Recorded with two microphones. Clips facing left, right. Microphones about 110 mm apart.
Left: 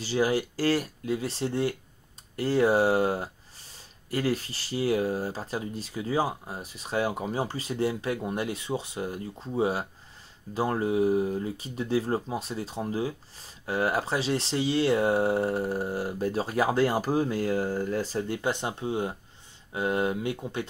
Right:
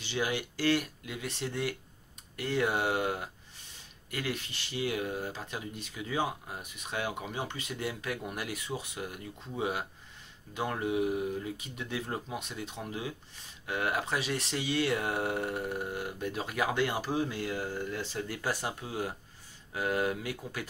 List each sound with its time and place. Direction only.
0.0 s speech: 35° left (ahead or behind)
18.3 s speech: 25° left (ahead or behind)